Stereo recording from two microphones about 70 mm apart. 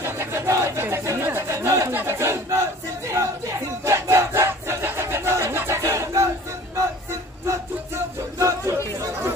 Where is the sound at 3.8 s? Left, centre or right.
Right.